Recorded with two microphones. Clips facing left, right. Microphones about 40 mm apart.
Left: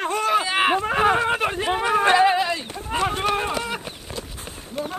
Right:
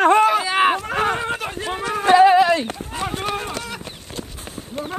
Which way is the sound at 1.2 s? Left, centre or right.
Centre.